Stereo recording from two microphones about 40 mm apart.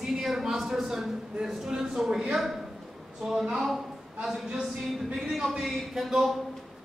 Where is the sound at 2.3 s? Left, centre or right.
Centre.